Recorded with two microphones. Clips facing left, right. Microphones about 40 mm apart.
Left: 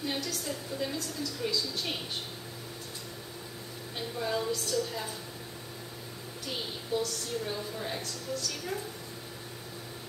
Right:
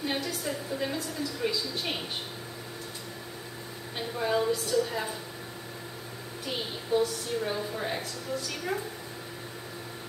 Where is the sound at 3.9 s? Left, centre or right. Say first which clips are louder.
Right 4 dB; centre.